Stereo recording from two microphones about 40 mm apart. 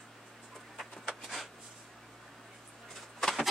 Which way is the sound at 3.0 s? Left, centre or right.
Centre.